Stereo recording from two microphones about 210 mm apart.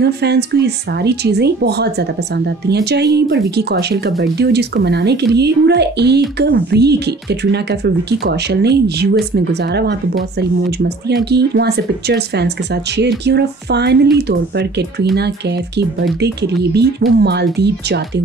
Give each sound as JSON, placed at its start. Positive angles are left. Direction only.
{"t": 0.0, "sound": "a woman's voice", "side_deg": -50}
{"t": 11.2, "sound": "a woman's voice", "side_deg": -50}
{"t": 16.7, "sound": "a woman's voice", "side_deg": -50}